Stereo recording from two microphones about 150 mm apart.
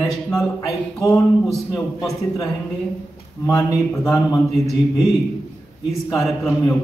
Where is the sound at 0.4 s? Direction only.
Centre (ahead or behind).